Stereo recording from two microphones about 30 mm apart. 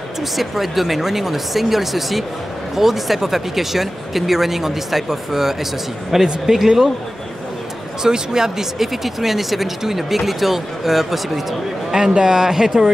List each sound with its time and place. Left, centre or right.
0.4 s speech: centre
8.0 s speech: right; by 11.4 s centre
11.9 s speech: right